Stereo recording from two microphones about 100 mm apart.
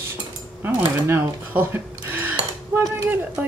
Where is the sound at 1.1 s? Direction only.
20° right (ahead or behind).